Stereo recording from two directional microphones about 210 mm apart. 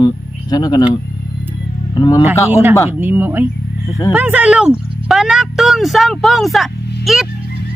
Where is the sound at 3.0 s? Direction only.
10° right (ahead or behind).